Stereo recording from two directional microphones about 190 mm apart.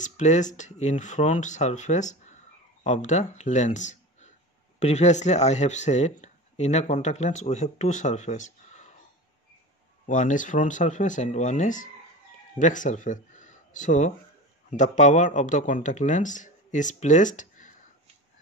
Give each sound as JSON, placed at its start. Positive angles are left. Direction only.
{"t": 0.0, "sound": "speech", "side_deg": 40}
{"t": 10.0, "sound": "speech", "side_deg": 40}